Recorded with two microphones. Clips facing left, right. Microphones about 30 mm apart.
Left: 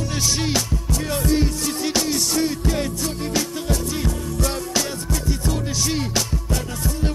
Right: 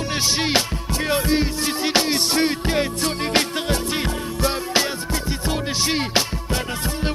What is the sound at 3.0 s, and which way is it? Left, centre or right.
Music, right.